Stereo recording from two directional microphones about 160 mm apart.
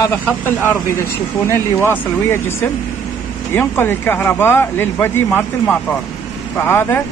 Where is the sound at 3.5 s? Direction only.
15° left (ahead or behind).